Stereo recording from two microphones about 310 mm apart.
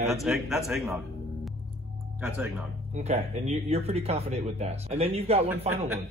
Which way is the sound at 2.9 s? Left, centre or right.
Right.